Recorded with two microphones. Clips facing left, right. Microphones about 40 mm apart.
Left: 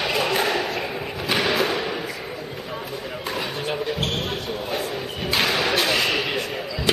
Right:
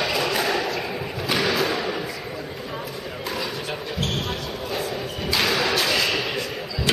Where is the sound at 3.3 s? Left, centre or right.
Left.